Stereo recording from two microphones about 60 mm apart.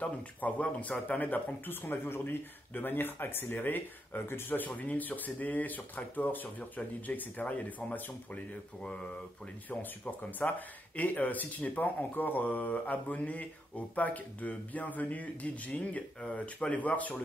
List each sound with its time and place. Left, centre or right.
0.0 s speech: left
10.4 s speech: left